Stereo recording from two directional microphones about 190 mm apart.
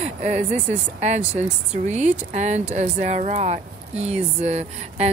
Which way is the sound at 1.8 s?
35° right (ahead or behind).